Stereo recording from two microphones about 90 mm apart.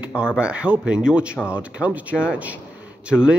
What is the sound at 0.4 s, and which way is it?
A man's voice, 15° right (ahead or behind).